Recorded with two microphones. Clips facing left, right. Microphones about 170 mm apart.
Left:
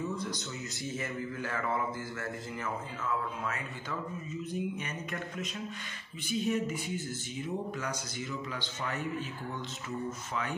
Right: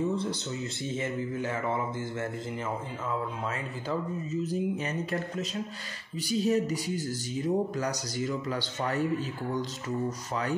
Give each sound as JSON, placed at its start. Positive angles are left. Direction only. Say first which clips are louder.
{"t": 0.0, "sound": "a man's voice", "louder": "right 6 dB", "side_deg": -30}